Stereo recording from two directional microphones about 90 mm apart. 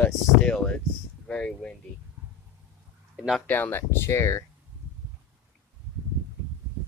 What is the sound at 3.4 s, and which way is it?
Speech, 20° left (ahead or behind).